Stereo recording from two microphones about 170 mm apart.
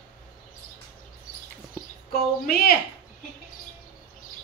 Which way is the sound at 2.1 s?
65° left (ahead or behind).